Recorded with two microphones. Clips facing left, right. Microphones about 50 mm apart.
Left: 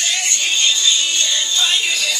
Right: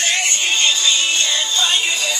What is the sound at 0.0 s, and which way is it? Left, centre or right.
Music, right.